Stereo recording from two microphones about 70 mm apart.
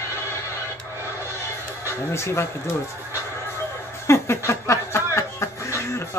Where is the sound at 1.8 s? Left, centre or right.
Left.